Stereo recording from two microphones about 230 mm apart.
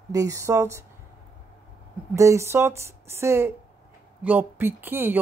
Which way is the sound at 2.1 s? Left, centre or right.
Centre.